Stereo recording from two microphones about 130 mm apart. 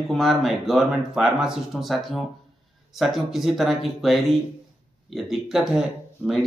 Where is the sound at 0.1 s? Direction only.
Centre (ahead or behind).